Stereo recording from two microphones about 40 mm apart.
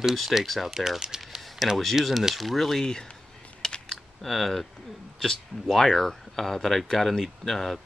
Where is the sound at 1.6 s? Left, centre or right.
Centre.